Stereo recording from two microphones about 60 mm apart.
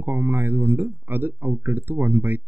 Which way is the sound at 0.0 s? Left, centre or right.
Right.